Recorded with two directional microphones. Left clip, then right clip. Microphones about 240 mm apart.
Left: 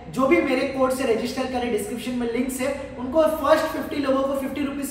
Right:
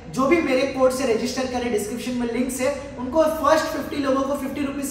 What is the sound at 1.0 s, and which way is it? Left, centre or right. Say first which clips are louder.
Speech: right 1 dB; centre.